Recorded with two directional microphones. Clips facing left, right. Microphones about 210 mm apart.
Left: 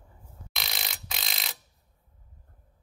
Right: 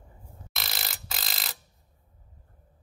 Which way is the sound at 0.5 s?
Centre (ahead or behind).